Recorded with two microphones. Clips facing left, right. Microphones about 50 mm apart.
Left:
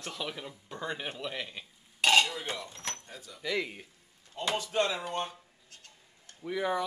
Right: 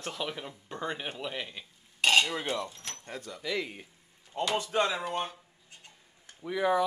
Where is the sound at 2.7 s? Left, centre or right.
Left.